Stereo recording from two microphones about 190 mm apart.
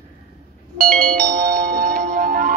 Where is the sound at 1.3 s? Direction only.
50° right (ahead or behind).